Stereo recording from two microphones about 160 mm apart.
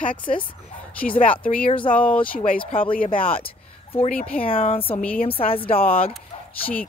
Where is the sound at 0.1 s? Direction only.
30° left (ahead or behind).